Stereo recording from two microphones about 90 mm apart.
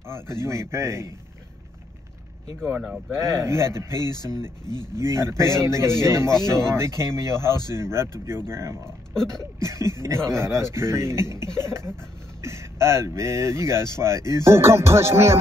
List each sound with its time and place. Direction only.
0.1 s speech: 30° right (ahead or behind)
2.6 s speech: 5° right (ahead or behind)
3.4 s speech: 30° right (ahead or behind)
3.9 s speech: 50° left (ahead or behind)
4.9 s speech: 30° right (ahead or behind)
9.1 s a sound: 5° left (ahead or behind)
9.4 s speech: 35° right (ahead or behind)